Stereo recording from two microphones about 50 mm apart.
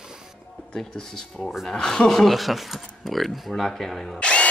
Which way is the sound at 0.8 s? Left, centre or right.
Centre.